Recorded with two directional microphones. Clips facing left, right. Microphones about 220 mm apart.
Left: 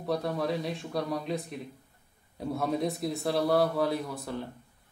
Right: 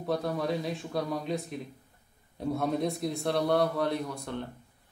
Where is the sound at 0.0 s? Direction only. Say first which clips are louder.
Even; centre (ahead or behind).